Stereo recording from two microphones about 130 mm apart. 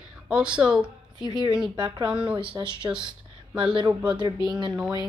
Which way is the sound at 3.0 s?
35° right (ahead or behind).